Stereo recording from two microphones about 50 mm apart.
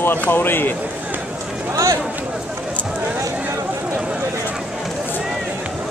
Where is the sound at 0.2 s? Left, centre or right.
Left.